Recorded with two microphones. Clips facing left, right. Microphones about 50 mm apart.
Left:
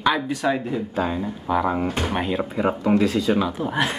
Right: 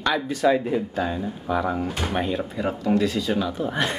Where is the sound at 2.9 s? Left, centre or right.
Left.